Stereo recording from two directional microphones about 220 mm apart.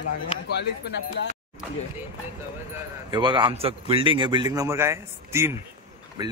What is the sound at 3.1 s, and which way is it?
A man's voice, 20° right (ahead or behind).